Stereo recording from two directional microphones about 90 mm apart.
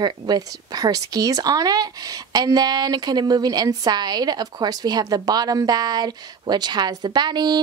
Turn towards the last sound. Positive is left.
turn(degrees=-55)  # may be behind; listen again after turning